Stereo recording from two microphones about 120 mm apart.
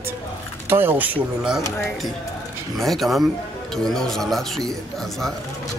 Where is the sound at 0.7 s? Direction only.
20° right (ahead or behind).